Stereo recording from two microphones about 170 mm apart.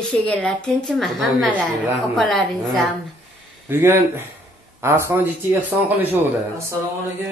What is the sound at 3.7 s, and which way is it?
Speech, 15° right (ahead or behind).